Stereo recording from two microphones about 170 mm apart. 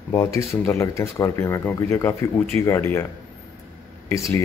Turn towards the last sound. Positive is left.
turn(degrees=15)  # may be behind; listen again after turning